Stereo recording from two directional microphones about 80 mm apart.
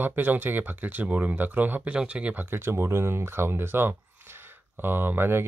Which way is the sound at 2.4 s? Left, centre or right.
Right.